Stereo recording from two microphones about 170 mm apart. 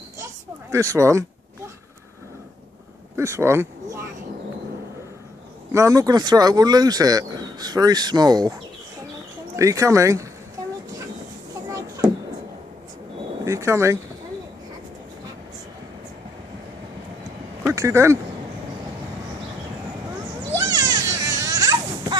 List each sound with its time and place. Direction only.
0.2 s children playing: 15° right (ahead or behind)
3.2 s speech: 15° right (ahead or behind)
5.7 s speech: 20° right (ahead or behind)
9.6 s speech: 20° right (ahead or behind)
13.4 s speech: 15° right (ahead or behind)
17.6 s speech: 15° right (ahead or behind)
20.5 s children playing: 20° right (ahead or behind)